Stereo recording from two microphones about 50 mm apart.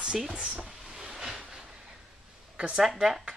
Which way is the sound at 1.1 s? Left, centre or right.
Centre.